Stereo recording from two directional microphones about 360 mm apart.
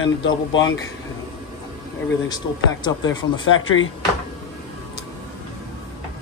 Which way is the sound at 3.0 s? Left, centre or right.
Left.